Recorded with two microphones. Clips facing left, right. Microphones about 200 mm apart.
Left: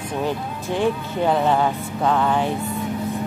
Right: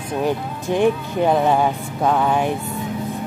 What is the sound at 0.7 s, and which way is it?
Speech, 15° right (ahead or behind).